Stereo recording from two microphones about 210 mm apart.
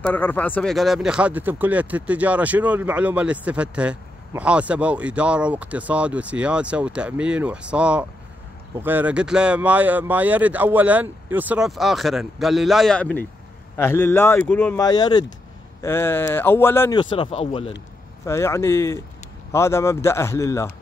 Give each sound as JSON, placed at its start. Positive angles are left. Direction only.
{"t": 0.0, "sound": "speech", "side_deg": 10}
{"t": 14.8, "sound": "speech", "side_deg": 20}
{"t": 17.0, "sound": "speech", "side_deg": 25}
{"t": 18.2, "sound": "speech", "side_deg": 15}